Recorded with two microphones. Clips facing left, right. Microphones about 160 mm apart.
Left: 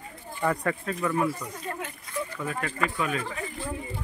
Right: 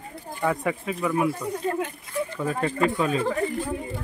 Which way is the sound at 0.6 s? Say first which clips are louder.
Right 2 dB; 10° right (ahead or behind).